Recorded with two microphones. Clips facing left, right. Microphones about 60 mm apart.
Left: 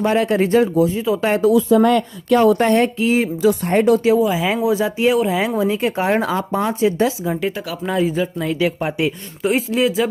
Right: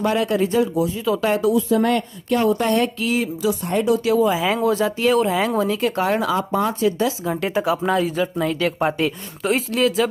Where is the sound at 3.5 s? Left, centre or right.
Left.